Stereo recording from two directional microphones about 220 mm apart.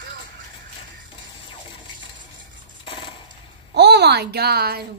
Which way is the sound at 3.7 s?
50° right (ahead or behind).